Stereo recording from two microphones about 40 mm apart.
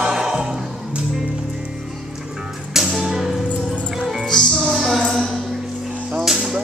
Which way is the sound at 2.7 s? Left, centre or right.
Centre.